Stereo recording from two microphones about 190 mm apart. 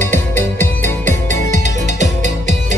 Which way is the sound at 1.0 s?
40° right (ahead or behind).